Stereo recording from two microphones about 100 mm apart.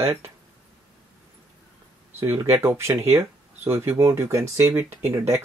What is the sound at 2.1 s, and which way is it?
Speech, 25° right (ahead or behind).